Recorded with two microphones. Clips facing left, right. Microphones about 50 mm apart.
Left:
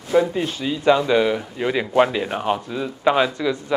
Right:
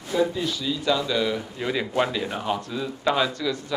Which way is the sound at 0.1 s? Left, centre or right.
Left.